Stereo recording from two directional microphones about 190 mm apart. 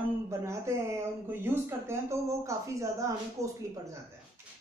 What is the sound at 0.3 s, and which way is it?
Speech, 15° right (ahead or behind).